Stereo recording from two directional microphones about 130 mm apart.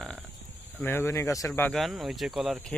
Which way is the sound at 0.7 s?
15° left (ahead or behind).